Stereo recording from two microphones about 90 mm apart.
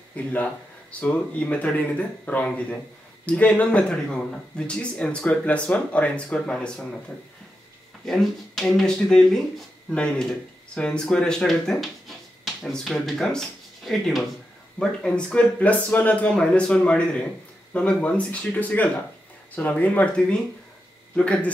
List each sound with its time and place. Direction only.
0.1 s speech: 15° left (ahead or behind)
8.0 s speech: centre (ahead or behind)
21.2 s speech: 10° left (ahead or behind)